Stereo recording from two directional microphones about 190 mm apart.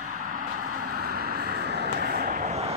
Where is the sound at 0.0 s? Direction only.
40° right (ahead or behind).